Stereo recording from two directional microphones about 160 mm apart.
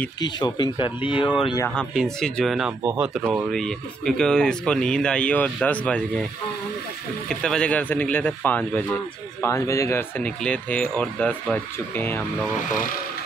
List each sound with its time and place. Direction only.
0.2 s speech: 25° left (ahead or behind)
2.1 s speech: 5° left (ahead or behind)
2.8 s speech: 15° right (ahead or behind)
3.4 s speech: 5° left (ahead or behind)
7.2 s a man's voice: 5° left (ahead or behind)